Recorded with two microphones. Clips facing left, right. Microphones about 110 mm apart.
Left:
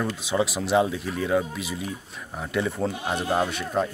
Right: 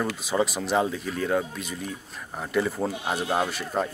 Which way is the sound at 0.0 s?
Centre (ahead or behind).